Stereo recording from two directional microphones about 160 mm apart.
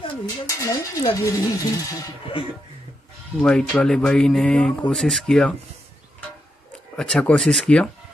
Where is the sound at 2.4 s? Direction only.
35° left (ahead or behind).